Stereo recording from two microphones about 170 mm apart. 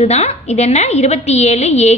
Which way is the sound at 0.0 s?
40° left (ahead or behind).